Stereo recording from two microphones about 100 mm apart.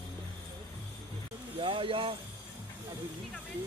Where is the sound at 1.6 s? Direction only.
60° right (ahead or behind).